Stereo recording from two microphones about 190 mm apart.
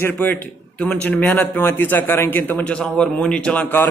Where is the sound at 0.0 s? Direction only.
10° left (ahead or behind).